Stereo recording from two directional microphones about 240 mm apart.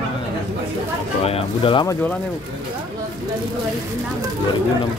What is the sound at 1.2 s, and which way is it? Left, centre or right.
Speech, left.